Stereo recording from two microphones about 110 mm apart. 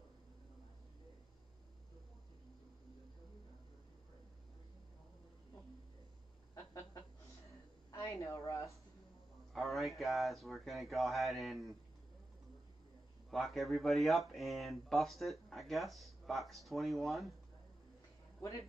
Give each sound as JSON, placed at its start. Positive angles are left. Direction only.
{"t": 6.5, "sound": "a sound", "side_deg": 30}
{"t": 7.9, "sound": "a woman's voice", "side_deg": 25}
{"t": 9.5, "sound": "speech", "side_deg": 0}
{"t": 13.3, "sound": "speech", "side_deg": 0}